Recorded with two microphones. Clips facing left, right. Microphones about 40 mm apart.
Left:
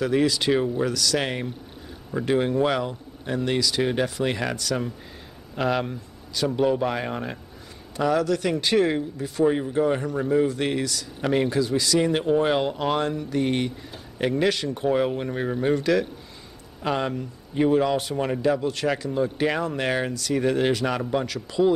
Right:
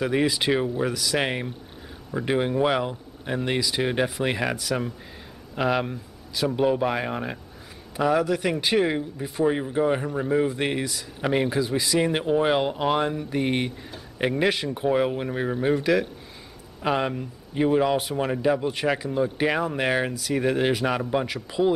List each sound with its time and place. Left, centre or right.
0.0 s speech: centre